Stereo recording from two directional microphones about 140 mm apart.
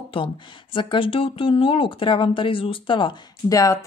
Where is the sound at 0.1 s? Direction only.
40° left (ahead or behind).